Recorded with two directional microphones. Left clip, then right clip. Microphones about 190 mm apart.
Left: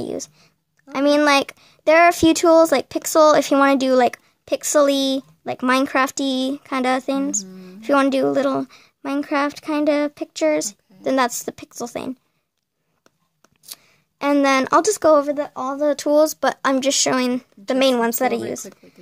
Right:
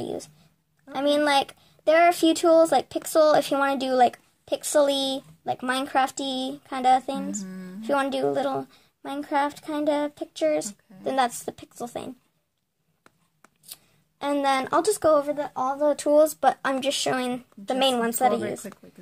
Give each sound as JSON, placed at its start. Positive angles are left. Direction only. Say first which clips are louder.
{"t": 0.0, "sound": "speech", "louder": "left 5 dB", "side_deg": 35}
{"t": 13.7, "sound": "speech", "louder": "left 7 dB", "side_deg": 40}